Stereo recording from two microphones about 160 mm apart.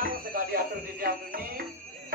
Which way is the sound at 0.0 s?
65° right (ahead or behind).